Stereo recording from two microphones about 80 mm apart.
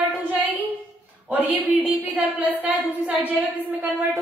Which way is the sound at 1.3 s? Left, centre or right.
Right.